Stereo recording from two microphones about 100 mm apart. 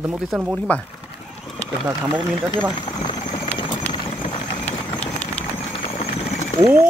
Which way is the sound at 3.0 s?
50° left (ahead or behind).